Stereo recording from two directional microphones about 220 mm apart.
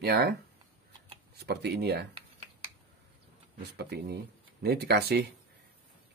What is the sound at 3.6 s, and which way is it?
Speech, 50° right (ahead or behind).